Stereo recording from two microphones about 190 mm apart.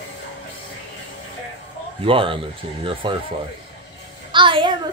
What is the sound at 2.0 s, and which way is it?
Speech, 30° right (ahead or behind).